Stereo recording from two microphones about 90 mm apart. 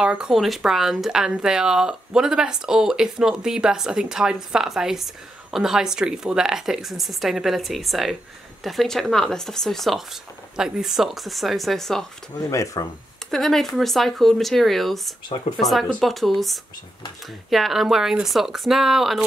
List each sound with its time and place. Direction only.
0.0 s speech: 10° right (ahead or behind)
12.4 s speech: 35° left (ahead or behind)
13.3 s speech: 5° left (ahead or behind)